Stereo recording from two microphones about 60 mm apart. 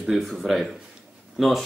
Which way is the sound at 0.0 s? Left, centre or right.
Centre.